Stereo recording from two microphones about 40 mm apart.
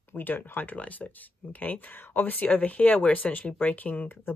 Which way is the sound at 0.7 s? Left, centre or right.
Left.